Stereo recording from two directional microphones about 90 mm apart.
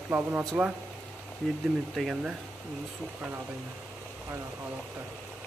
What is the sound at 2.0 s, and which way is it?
Speech, centre (ahead or behind).